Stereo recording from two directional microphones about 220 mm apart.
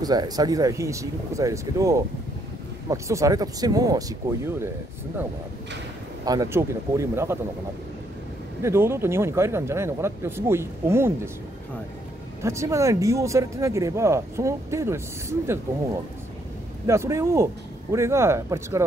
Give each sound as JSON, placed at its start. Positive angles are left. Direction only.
{"t": 0.0, "sound": "speech", "side_deg": -15}
{"t": 6.2, "sound": "speech", "side_deg": -15}
{"t": 8.6, "sound": "speech", "side_deg": -10}
{"t": 12.4, "sound": "speech", "side_deg": -15}
{"t": 16.8, "sound": "speech", "side_deg": -15}